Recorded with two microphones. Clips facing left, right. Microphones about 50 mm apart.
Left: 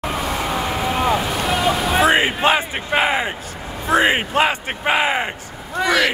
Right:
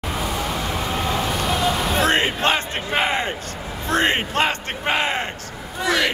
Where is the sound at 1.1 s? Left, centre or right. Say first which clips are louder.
Left 3 dB; centre.